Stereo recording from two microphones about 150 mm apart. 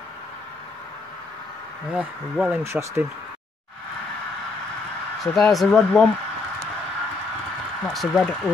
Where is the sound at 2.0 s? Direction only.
10° right (ahead or behind).